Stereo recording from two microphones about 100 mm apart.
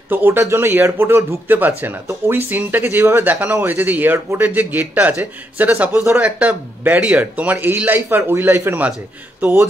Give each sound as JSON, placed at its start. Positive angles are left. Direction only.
{"t": 0.1, "sound": "speech", "side_deg": -20}